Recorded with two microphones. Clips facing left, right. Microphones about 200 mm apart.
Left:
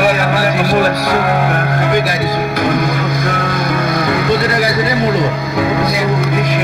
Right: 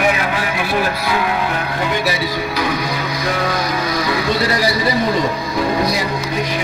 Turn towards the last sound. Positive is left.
turn(degrees=55)  # may be behind; listen again after turning